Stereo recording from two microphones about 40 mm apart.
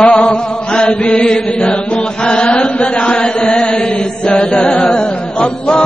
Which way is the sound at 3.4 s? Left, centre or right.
Left.